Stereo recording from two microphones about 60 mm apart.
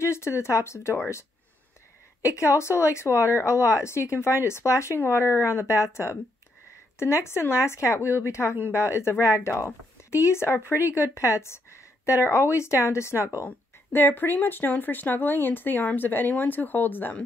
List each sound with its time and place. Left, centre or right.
0.0 s speech: left
2.2 s speech: left
13.9 s speech: left